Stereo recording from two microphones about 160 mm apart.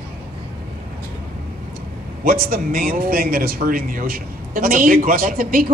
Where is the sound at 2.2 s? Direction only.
65° right (ahead or behind).